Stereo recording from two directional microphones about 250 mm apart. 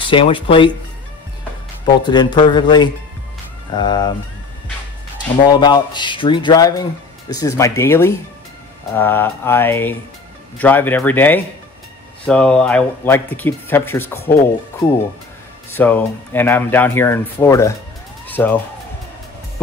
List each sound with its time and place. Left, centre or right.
0.0 s speech: centre
1.9 s speech: centre
5.5 s speech: centre
15.7 s speech: centre
18.2 s music: centre